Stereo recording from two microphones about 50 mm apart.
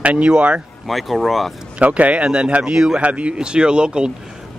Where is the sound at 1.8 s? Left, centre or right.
Right.